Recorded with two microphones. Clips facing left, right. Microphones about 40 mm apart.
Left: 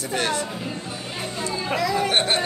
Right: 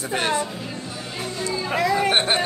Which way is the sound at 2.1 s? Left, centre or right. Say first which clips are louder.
Right 1 dB; centre.